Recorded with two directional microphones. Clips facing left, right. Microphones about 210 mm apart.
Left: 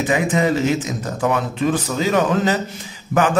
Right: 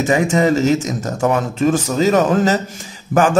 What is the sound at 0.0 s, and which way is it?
Speech, 45° right (ahead or behind).